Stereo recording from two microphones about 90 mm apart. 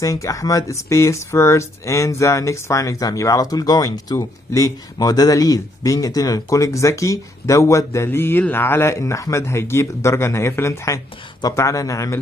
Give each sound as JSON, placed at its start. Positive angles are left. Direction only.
{"t": 0.0, "sound": "speech", "side_deg": 40}